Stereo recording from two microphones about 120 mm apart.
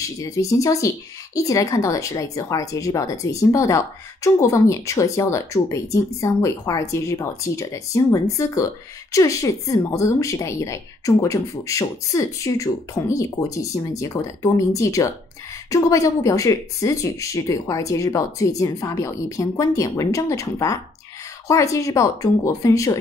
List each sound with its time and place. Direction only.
0.0 s speech: 25° left (ahead or behind)